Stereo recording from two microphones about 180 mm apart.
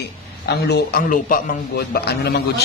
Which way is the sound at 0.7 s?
55° left (ahead or behind).